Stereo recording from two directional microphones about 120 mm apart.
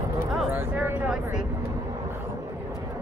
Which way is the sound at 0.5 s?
15° right (ahead or behind).